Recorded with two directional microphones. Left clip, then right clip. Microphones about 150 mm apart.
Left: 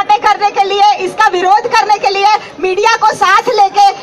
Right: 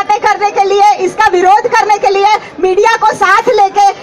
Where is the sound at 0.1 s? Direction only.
25° right (ahead or behind).